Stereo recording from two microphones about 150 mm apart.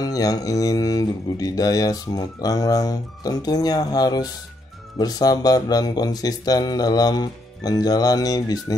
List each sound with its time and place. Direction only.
0.0 s speech: 25° left (ahead or behind)